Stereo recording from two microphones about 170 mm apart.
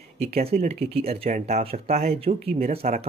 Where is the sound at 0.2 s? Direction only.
35° right (ahead or behind).